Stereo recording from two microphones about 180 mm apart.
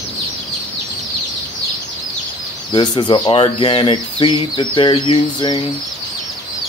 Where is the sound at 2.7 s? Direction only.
25° left (ahead or behind).